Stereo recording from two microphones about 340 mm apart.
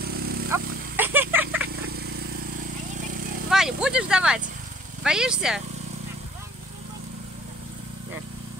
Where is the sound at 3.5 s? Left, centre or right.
Centre.